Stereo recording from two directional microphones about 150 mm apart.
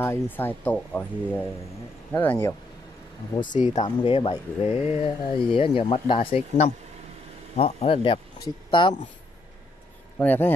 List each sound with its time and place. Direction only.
0.0 s speech: 15° left (ahead or behind)
3.3 s speech: 60° left (ahead or behind)
3.8 s speech: 35° left (ahead or behind)
10.1 s speech: 10° left (ahead or behind)